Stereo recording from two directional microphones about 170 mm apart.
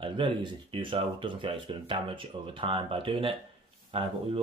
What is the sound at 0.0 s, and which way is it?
Speech, 30° right (ahead or behind).